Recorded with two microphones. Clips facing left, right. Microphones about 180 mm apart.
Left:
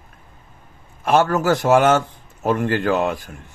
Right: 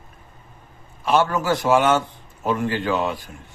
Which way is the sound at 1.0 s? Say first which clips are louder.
Left 3 dB; 45° left (ahead or behind).